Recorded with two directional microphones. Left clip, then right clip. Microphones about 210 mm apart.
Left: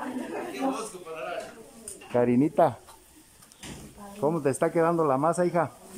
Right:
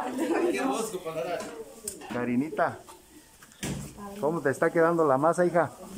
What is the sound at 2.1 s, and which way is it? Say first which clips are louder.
Speech: left 6 dB; 25° left (ahead or behind).